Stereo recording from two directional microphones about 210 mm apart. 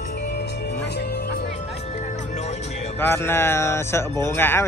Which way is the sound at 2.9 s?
10° left (ahead or behind).